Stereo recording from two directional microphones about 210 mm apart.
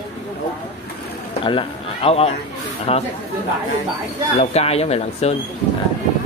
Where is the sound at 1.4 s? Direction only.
25° left (ahead or behind).